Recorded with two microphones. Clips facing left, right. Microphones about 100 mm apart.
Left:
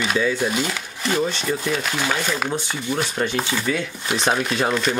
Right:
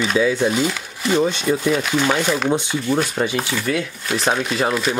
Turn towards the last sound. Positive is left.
turn(degrees=-5)  # may be behind; listen again after turning